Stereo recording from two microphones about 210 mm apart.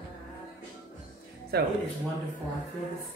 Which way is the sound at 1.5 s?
50° right (ahead or behind).